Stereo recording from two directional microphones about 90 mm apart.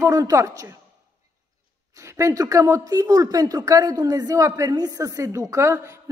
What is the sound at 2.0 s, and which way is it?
A woman's voice, 35° right (ahead or behind).